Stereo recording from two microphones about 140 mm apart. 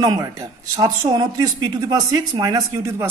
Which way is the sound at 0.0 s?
25° right (ahead or behind).